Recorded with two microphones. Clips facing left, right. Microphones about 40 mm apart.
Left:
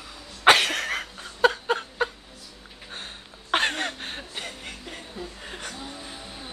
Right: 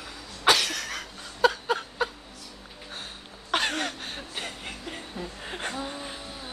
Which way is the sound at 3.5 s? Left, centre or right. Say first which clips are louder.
Left 2 dB; left.